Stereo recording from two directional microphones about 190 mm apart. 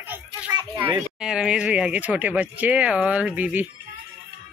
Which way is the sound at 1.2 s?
5° right (ahead or behind).